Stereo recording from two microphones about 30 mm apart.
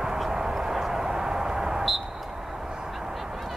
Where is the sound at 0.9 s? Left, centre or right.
Right.